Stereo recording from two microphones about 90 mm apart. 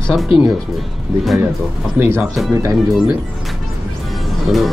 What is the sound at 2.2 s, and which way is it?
Speech, centre (ahead or behind).